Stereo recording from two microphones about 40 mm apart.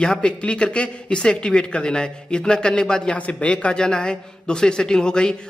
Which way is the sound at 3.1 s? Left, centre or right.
Left.